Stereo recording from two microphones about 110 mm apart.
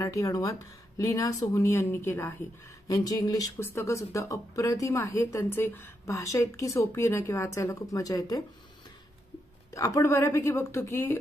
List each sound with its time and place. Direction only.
0.0 s speech: 30° left (ahead or behind)
2.9 s speech: 35° left (ahead or behind)
9.8 s speech: 30° left (ahead or behind)